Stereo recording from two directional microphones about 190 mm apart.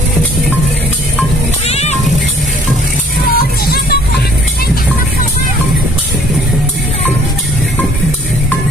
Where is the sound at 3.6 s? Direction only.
55° left (ahead or behind).